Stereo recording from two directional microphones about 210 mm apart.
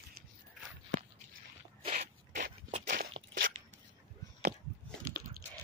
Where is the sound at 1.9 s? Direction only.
40° right (ahead or behind).